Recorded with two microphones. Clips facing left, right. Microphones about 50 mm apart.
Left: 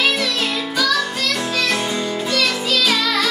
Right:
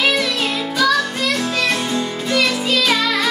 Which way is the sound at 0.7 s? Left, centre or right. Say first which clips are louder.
Right 3 dB; centre.